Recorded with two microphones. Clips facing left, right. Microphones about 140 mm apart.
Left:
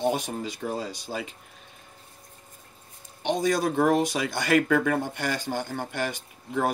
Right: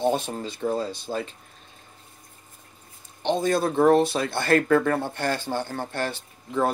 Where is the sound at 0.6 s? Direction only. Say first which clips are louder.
Right 9 dB; 45° right (ahead or behind).